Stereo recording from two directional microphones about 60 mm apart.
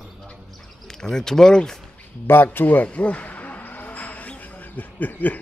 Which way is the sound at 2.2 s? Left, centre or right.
Left.